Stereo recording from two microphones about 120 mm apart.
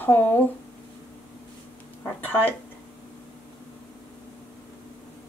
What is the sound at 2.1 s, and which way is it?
Speech, 15° left (ahead or behind).